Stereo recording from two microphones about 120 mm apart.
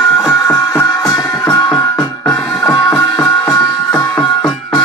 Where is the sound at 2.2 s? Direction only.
5° left (ahead or behind).